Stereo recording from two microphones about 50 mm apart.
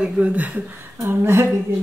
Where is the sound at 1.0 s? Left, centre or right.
Right.